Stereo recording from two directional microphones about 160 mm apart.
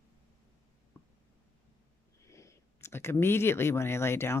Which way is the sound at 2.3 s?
20° left (ahead or behind).